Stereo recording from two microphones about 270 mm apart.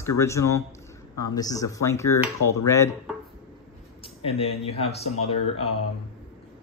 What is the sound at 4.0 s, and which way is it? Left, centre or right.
Speech, left.